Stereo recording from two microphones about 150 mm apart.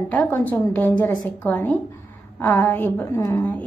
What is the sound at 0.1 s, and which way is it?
A woman's voice, 10° left (ahead or behind).